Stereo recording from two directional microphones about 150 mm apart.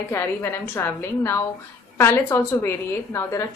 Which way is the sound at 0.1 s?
15° left (ahead or behind).